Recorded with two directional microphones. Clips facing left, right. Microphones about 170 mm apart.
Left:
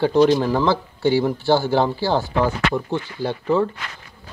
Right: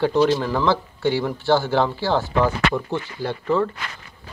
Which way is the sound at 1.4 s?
35° left (ahead or behind).